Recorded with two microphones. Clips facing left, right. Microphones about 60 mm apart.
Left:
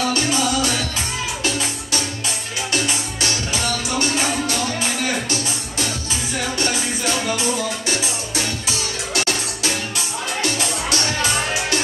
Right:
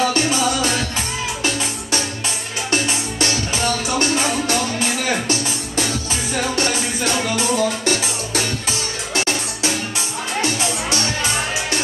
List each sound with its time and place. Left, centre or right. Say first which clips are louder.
0.0 s music: right 2 dB; right
2.7 s music: right 3 dB; right
7.2 s music: right 3 dB; right
9.1 s music: right 2 dB; right